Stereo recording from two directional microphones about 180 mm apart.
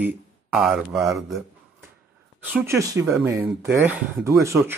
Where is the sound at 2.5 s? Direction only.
15° right (ahead or behind).